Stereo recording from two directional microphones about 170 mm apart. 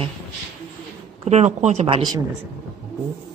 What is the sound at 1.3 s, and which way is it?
Speech, 40° right (ahead or behind).